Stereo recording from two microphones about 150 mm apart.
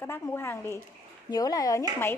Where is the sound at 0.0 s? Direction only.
15° left (ahead or behind).